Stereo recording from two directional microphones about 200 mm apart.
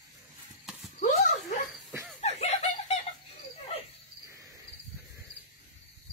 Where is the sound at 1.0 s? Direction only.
35° left (ahead or behind).